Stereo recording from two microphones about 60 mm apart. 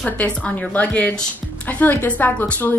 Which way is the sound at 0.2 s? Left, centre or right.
Left.